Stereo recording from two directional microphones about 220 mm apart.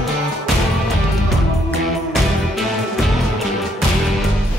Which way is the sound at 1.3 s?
Centre (ahead or behind).